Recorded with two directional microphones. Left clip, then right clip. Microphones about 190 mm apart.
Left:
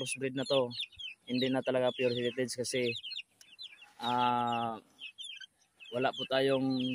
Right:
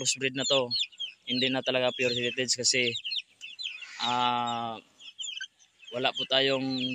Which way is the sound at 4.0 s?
15° left (ahead or behind).